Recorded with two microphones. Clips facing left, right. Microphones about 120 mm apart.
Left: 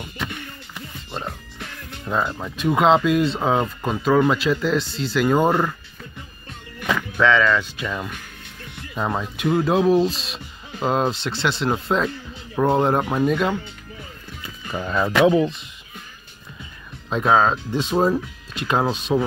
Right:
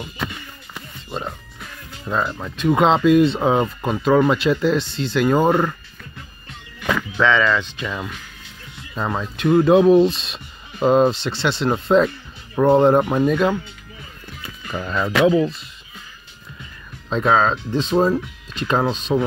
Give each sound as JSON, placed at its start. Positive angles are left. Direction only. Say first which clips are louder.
{"t": 1.6, "sound": "music", "louder": "left 2 dB", "side_deg": 75}
{"t": 2.0, "sound": "speech", "louder": "right 1 dB", "side_deg": 5}
{"t": 7.2, "sound": "speech", "louder": "even", "side_deg": 0}
{"t": 8.9, "sound": "speech", "louder": "even", "side_deg": 5}
{"t": 9.5, "sound": "speech", "louder": "right 5 dB", "side_deg": 0}
{"t": 14.6, "sound": "music", "louder": "even", "side_deg": 20}
{"t": 15.2, "sound": "speech", "louder": "right 2 dB", "side_deg": 20}
{"t": 17.1, "sound": "speech", "louder": "even", "side_deg": 10}